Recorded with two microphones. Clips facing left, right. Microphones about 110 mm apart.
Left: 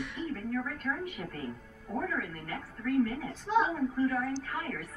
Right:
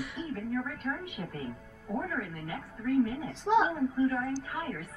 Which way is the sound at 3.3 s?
90° right.